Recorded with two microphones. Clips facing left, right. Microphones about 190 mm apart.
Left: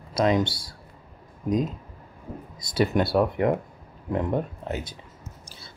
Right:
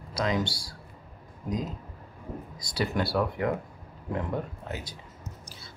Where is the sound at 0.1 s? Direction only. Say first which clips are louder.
Left 6 dB; 20° left (ahead or behind).